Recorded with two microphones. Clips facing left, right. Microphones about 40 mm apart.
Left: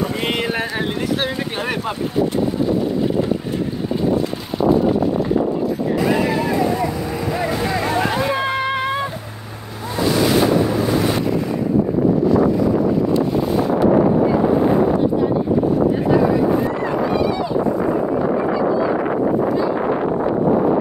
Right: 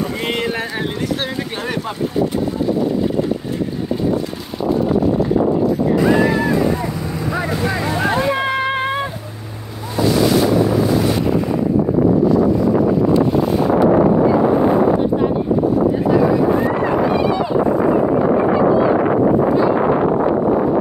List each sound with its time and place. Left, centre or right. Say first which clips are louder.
0.0 s a sound: even; centre
1.2 s speech: left 1 dB; centre
7.6 s vehicle: even; centre
8.4 s music: right 2 dB; right